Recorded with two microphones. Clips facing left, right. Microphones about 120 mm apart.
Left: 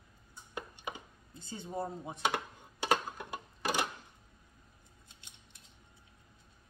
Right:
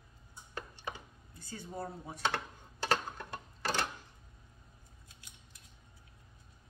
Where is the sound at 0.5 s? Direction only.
15° left (ahead or behind).